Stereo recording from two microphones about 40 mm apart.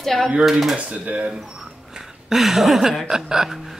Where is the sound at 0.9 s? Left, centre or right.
Right.